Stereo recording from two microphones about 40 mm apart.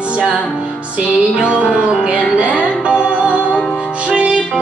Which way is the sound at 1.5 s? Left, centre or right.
Right.